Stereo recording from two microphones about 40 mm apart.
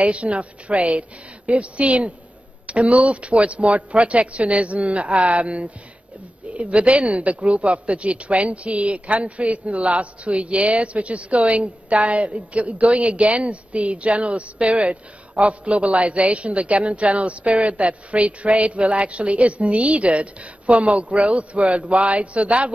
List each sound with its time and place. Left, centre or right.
0.0 s a woman's voice: right